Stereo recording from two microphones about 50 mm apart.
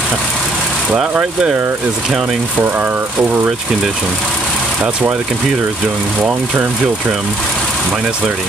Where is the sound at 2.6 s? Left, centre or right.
Right.